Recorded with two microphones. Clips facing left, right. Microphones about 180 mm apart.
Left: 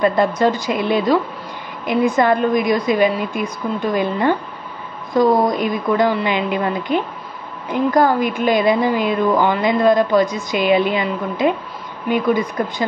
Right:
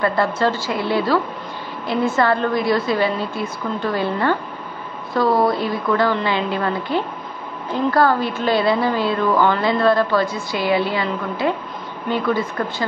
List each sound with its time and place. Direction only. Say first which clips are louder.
0.0 s a woman's voice: left 3 dB; 15° left (ahead or behind)